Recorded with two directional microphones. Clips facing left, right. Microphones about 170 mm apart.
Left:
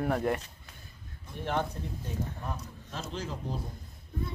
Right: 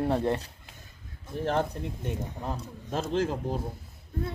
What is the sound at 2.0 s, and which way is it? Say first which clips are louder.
Speech: right 2 dB; 25° right (ahead or behind).